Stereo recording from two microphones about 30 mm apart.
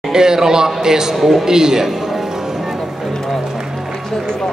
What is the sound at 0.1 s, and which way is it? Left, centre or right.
A man's voice, right.